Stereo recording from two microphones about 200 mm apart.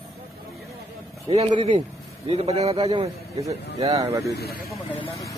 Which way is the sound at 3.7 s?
15° right (ahead or behind).